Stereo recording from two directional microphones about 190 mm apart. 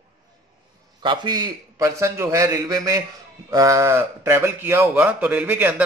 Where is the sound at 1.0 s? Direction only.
25° right (ahead or behind).